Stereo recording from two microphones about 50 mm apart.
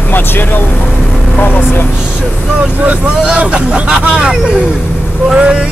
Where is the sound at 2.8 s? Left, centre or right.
Right.